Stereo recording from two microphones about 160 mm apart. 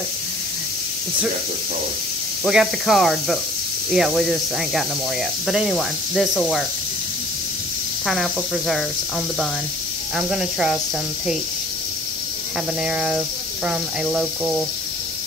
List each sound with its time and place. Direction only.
2.4 s speech: centre (ahead or behind)
8.1 s speech: centre (ahead or behind)
10.1 s speech: 5° right (ahead or behind)
12.8 s speech: 5° right (ahead or behind)